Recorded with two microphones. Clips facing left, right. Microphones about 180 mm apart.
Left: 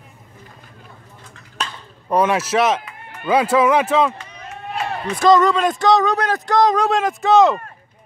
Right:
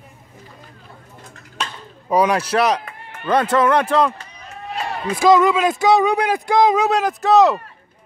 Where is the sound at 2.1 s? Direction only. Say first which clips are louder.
Even; centre (ahead or behind).